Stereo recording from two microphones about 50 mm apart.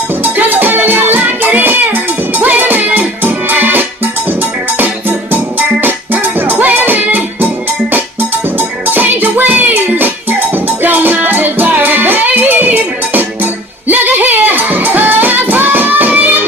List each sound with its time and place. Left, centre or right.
0.2 s music: right
8.5 s music: right